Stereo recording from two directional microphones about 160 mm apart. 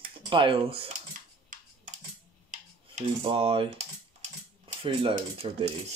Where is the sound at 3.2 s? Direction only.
35° right (ahead or behind).